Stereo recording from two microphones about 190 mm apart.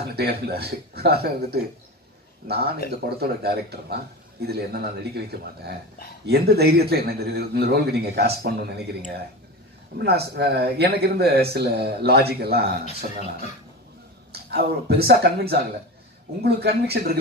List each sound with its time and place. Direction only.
0.1 s a man's voice: 55° right (ahead or behind)
14.3 s a man's voice: 55° right (ahead or behind)